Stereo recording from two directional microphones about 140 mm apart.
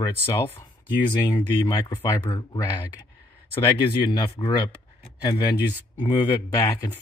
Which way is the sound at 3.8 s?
30° left (ahead or behind).